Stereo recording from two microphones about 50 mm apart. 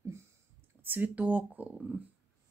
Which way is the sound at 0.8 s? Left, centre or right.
Right.